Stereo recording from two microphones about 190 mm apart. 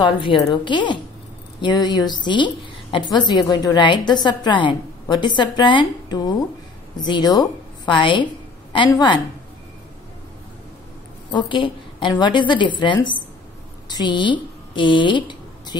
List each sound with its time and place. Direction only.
0.0 s a woman's voice: 25° left (ahead or behind)
11.3 s a woman's voice: 25° left (ahead or behind)